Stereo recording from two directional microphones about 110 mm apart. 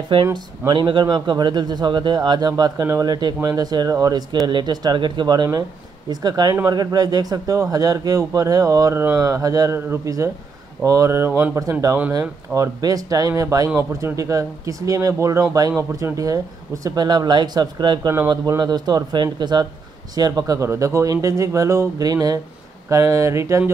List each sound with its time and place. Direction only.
0.1 s a man's voice: 45° right (ahead or behind); by 11.6 s 20° right (ahead or behind)
12.1 s a man's voice: 35° right (ahead or behind)